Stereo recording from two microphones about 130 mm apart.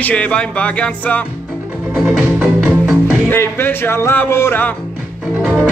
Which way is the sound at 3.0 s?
20° left (ahead or behind).